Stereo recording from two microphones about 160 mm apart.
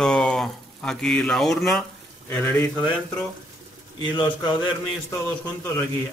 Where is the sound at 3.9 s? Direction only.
30° left (ahead or behind).